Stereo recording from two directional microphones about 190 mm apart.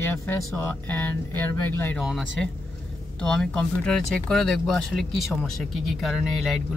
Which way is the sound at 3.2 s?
5° left (ahead or behind).